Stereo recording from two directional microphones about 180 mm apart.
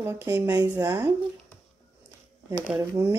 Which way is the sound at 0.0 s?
10° right (ahead or behind).